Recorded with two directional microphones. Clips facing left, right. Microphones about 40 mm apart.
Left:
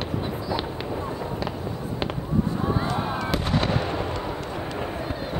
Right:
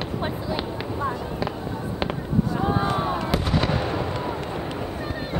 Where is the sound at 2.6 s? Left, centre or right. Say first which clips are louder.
Right 2 dB; right.